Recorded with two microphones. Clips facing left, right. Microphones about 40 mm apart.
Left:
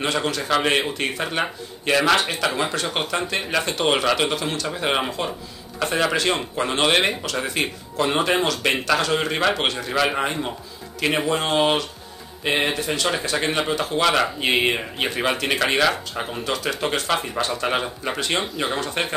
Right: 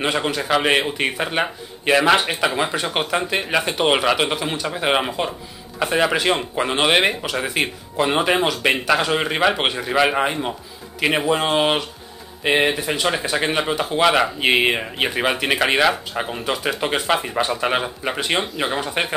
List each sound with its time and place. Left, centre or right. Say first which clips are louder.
0.0 s speech: right 2 dB; centre